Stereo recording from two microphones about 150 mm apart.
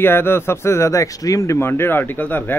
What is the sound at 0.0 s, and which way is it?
A man's voice, 15° left (ahead or behind).